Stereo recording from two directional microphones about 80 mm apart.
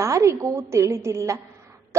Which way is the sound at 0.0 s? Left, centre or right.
Right.